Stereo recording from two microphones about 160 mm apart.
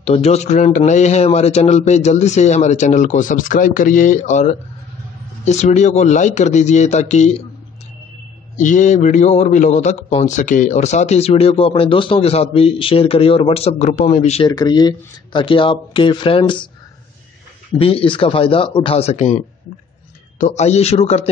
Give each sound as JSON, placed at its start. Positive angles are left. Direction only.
{"t": 0.0, "sound": "a man's voice", "side_deg": 40}
{"t": 8.5, "sound": "a man's voice", "side_deg": 50}
{"t": 14.5, "sound": "a man's voice", "side_deg": 25}
{"t": 17.7, "sound": "a man's voice", "side_deg": 35}